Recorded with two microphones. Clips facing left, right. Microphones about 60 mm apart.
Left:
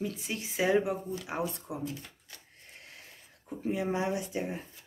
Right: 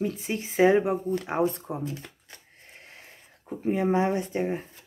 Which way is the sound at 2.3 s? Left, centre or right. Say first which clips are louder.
Right 3 dB; right.